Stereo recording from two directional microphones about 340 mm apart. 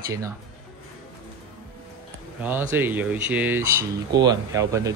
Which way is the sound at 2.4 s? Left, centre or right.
Centre.